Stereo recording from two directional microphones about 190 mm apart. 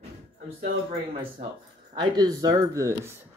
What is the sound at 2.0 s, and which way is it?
Speech, 20° right (ahead or behind).